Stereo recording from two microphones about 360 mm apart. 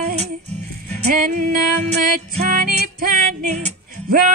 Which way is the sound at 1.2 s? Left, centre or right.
Right.